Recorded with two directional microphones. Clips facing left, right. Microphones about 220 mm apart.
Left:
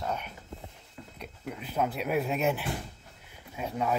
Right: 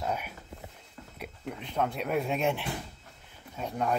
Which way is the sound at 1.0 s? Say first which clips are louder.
Left 2 dB; 10° left (ahead or behind).